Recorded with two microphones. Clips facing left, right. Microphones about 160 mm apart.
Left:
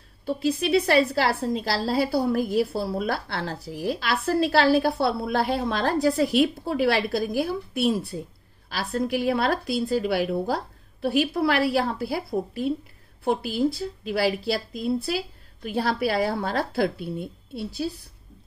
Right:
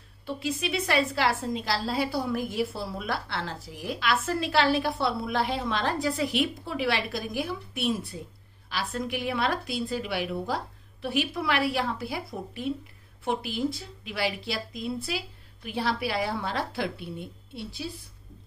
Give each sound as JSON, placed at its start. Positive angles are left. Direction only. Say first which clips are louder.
{"t": 0.3, "sound": "a woman's voice", "louder": "left 8 dB", "side_deg": 35}